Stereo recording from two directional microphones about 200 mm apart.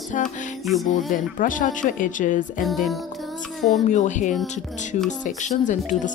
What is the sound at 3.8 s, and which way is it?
Speech, 35° left (ahead or behind).